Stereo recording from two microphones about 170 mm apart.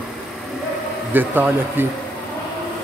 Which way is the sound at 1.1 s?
10° right (ahead or behind).